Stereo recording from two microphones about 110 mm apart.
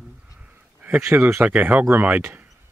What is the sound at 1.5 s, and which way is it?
Speech, 10° right (ahead or behind).